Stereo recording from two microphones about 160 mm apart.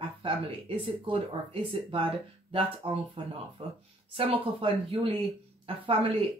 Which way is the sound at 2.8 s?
35° right (ahead or behind).